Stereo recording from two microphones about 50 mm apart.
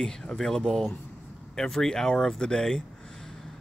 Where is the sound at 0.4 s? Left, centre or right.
Centre.